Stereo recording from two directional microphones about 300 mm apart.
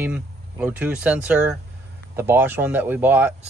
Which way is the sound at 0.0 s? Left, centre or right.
Centre.